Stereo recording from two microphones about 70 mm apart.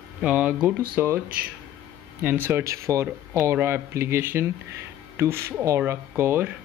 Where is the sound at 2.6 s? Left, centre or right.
Right.